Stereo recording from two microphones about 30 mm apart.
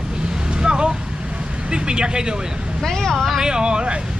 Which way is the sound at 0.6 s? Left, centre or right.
Right.